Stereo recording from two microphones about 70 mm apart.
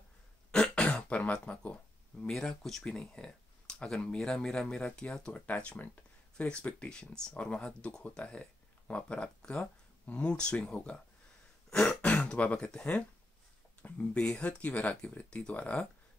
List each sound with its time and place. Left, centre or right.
0.5 s throat clearing: centre
2.3 s speech: centre
12.0 s speech: centre